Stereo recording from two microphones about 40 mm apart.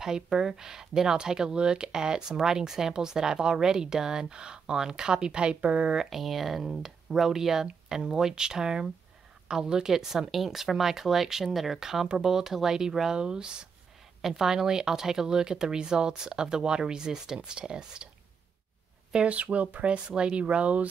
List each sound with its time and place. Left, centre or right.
0.0 s a woman's voice: centre; by 5.9 s right
6.0 s speech: centre; by 18.1 s right
19.2 s speech: right
19.9 s a woman's voice: right